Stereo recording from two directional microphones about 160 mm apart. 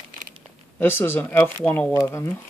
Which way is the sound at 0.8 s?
15° left (ahead or behind).